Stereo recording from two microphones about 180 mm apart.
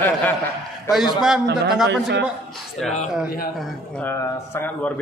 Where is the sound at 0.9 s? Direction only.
Centre (ahead or behind).